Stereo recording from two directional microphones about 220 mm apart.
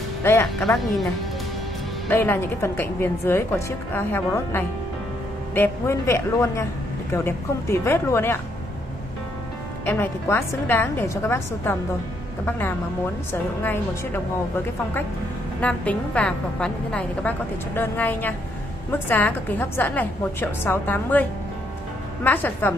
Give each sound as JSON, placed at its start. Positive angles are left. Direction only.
{"t": 0.2, "sound": "a woman's voice", "side_deg": 10}
{"t": 2.0, "sound": "a woman's voice", "side_deg": 10}
{"t": 9.8, "sound": "a woman's voice", "side_deg": 10}
{"t": 15.6, "sound": "a woman's voice", "side_deg": 5}